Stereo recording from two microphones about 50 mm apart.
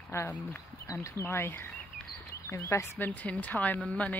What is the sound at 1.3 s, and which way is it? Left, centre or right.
Speech, left.